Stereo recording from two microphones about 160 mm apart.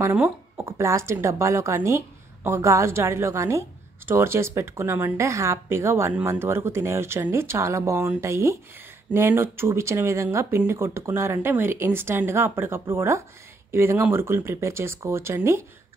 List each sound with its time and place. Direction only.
0.0 s a woman's voice: 15° right (ahead or behind)